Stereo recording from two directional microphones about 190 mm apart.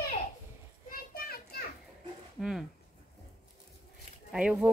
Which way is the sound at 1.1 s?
55° left (ahead or behind).